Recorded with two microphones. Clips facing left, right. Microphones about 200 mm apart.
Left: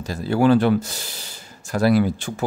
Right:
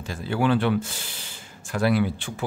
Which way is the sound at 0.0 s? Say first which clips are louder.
Left 6 dB; 40° left (ahead or behind).